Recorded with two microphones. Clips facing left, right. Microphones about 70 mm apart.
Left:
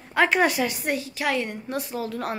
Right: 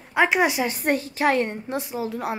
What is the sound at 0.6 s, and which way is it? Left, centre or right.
A woman's voice, right.